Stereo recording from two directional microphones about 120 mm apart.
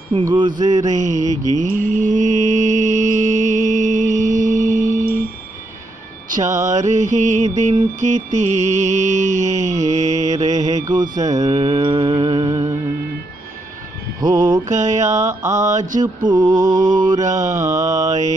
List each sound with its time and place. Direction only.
0.2 s mantra: 40° right (ahead or behind)
0.7 s mantra: 90° right
6.3 s mantra: 25° right (ahead or behind)
6.7 s mantra: 85° right
10.1 s mantra: 30° right (ahead or behind)
14.2 s mantra: 40° right (ahead or behind)
14.7 s mantra: 90° right
15.0 s mantra: 25° right (ahead or behind)